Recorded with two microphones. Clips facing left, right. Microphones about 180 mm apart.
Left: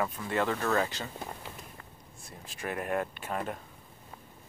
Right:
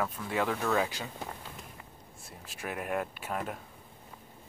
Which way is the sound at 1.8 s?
5° right (ahead or behind).